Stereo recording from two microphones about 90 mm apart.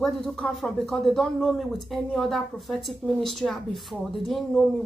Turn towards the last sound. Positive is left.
turn(degrees=0)  # may be behind; listen again after turning